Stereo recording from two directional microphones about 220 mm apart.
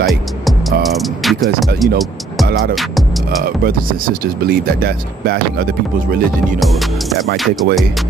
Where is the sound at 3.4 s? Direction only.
40° right (ahead or behind).